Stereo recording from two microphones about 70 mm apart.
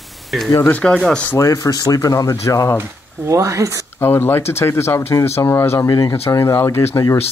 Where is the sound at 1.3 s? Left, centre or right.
Left.